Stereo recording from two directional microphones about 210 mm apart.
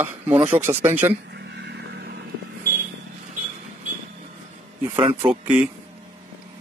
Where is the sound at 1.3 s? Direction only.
55° right (ahead or behind).